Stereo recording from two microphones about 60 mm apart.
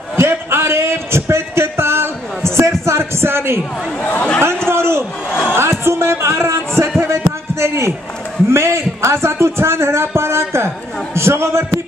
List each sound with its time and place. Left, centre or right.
0.1 s a sound: right
4.0 s speech: left
4.6 s a sound: right
5.5 s music: right
7.0 s heart sounds: right
8.5 s a man's voice: right